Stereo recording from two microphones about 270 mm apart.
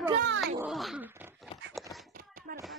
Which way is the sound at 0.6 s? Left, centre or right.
Centre.